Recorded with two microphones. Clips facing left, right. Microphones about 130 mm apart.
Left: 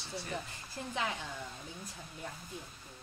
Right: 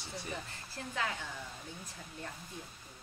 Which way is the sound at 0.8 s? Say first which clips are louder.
Left 2 dB; 20° left (ahead or behind).